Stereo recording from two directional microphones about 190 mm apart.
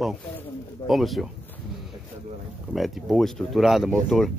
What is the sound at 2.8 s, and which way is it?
Speech, centre (ahead or behind).